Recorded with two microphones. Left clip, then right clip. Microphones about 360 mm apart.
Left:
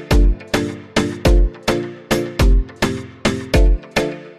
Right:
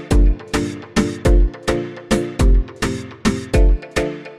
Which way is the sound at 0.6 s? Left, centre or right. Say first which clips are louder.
Left 1 dB; centre.